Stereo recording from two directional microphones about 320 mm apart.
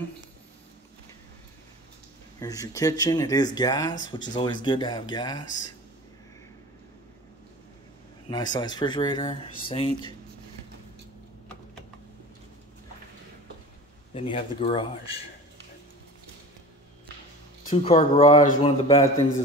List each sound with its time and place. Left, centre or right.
2.4 s speech: centre
8.3 s speech: centre
14.1 s speech: centre
17.6 s speech: centre